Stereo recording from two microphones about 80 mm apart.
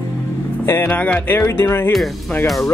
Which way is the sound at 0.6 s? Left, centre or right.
Left.